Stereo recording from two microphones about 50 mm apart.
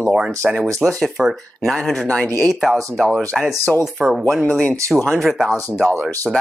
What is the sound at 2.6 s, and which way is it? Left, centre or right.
Speech, centre.